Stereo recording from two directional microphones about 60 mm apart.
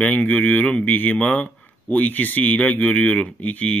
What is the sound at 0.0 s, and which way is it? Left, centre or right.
Speech, left.